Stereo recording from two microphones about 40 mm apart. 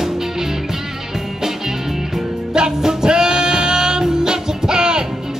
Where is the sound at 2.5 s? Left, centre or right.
Centre.